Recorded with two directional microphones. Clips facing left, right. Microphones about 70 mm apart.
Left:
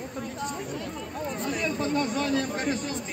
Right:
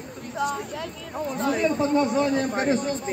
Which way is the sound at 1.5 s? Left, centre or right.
Right.